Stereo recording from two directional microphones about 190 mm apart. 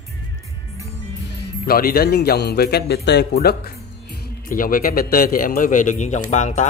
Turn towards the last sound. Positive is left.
turn(degrees=40)  # may be behind; listen again after turning